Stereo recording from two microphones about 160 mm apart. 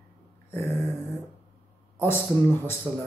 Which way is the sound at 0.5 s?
15° left (ahead or behind).